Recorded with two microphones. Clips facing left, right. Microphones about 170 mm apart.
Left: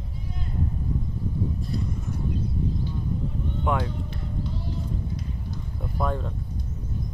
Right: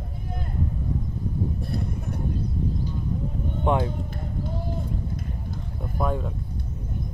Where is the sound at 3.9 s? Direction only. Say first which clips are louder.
Right 1 dB; 50° right (ahead or behind).